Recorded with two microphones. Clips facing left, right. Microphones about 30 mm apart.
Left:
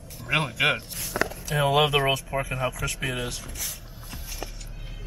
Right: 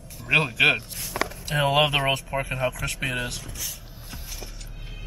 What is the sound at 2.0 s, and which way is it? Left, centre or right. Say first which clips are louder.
Speech: even; right.